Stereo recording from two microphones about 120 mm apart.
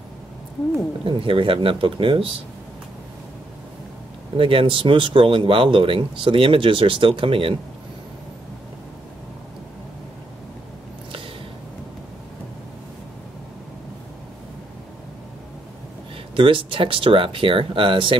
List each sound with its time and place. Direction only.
1.0 s speech: 45° right (ahead or behind)
4.4 s speech: 45° right (ahead or behind)
16.3 s speech: 45° right (ahead or behind)